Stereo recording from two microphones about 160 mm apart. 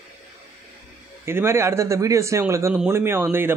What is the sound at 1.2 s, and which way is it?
Speech, 15° right (ahead or behind).